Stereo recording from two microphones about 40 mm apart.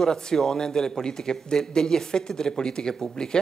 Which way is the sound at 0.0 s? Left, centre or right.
Centre.